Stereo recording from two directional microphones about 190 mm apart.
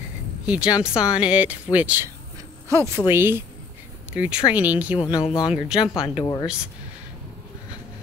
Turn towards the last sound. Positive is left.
turn(degrees=-5)  # may be behind; listen again after turning